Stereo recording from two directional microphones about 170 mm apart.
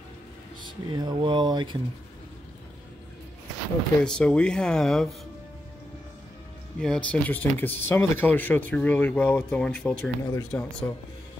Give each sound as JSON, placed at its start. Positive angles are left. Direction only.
{"t": 0.8, "sound": "speech", "side_deg": -25}
{"t": 4.0, "sound": "speech", "side_deg": 5}
{"t": 6.8, "sound": "speech", "side_deg": 5}